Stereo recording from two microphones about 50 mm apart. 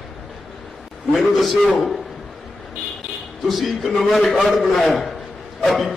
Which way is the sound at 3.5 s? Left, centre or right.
Centre.